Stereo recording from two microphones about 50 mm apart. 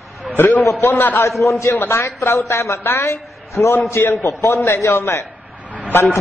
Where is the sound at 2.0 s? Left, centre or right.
Left.